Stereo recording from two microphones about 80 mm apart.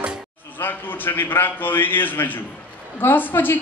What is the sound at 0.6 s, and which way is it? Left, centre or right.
A man's voice, left.